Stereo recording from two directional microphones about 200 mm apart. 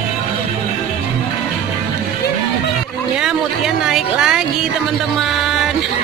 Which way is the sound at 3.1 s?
Centre (ahead or behind).